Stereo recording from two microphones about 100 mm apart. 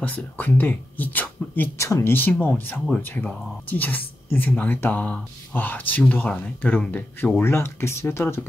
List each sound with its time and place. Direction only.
0.0 s a woman's voice: 15° left (ahead or behind)